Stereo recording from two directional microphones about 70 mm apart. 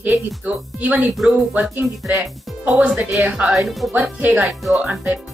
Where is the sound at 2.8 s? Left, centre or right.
Centre.